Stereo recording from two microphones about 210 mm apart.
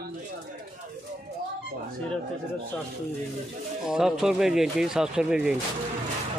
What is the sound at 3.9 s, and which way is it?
Speech, centre (ahead or behind).